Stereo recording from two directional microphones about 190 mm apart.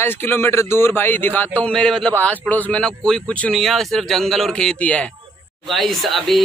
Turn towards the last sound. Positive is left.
turn(degrees=0)  # may be behind; listen again after turning